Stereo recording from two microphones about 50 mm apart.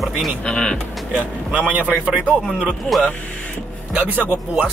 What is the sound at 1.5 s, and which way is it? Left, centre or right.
Speech, right.